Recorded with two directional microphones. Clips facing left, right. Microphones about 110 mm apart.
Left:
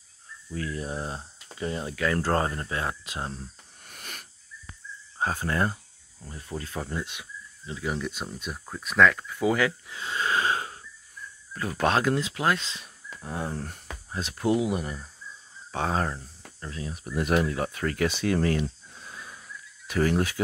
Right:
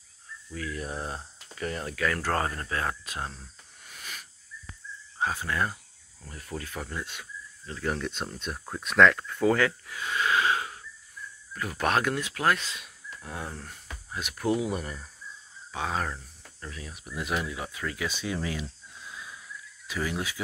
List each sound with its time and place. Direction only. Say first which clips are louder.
0.6 s speech: left 2 dB; 30° left (ahead or behind)
3.8 s hiss: even; 50° left (ahead or behind)
5.2 s speech: left 2 dB; 40° left (ahead or behind)
6.2 s speech: left 2 dB; 20° left (ahead or behind)
9.8 s wheeze: right 1 dB; 25° left (ahead or behind)
11.8 s speech: left 3 dB; 25° left (ahead or behind)
14.4 s speech: left 3 dB; 20° left (ahead or behind)
15.7 s speech: left 4 dB; 40° left (ahead or behind)
17.0 s speech: left 7 dB; 45° left (ahead or behind)